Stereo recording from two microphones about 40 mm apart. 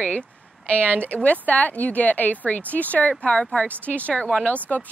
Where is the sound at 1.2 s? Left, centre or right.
Left.